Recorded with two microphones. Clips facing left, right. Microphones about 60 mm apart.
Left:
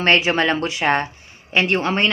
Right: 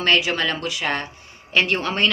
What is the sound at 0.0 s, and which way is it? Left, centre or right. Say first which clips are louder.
A woman's voice: left 3 dB; left.